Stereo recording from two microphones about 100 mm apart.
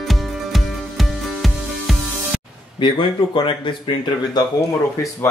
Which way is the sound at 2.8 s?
55° left (ahead or behind).